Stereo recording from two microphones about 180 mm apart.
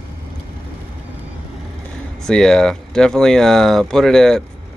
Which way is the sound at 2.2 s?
5° left (ahead or behind).